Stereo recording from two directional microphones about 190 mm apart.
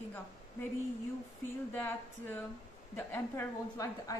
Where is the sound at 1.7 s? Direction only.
10° left (ahead or behind).